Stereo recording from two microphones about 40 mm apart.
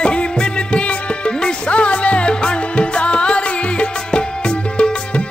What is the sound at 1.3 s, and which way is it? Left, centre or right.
Music, centre.